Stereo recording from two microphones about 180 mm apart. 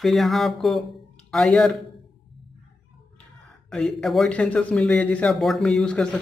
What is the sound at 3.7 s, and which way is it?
Speech, 5° left (ahead or behind).